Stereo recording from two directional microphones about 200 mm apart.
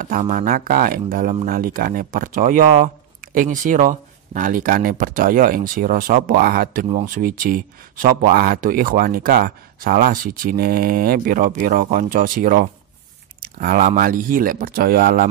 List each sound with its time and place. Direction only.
0.0 s speech: 45° right (ahead or behind)